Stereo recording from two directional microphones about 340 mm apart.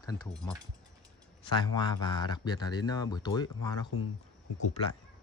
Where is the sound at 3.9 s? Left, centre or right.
Left.